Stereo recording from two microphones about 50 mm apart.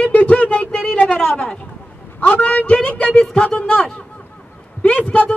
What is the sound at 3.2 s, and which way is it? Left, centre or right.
Speech, centre.